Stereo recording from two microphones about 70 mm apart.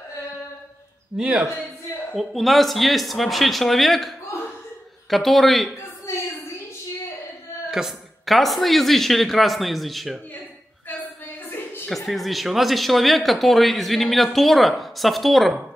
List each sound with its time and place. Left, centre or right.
1.1 s speech: centre
5.1 s speech: centre
7.7 s speech: centre
11.4 s a sound: left
12.1 s speech: centre